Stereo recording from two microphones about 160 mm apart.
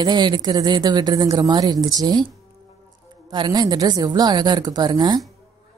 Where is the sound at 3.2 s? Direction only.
30° right (ahead or behind).